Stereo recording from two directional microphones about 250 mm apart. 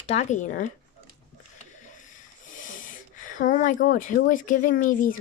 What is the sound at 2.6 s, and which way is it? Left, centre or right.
Speech, left.